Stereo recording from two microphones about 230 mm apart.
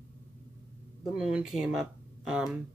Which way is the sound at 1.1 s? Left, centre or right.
Centre.